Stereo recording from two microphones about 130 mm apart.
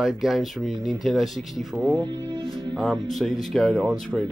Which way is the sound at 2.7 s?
Centre (ahead or behind).